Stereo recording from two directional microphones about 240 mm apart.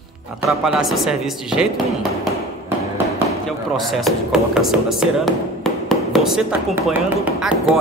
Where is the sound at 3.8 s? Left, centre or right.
Centre.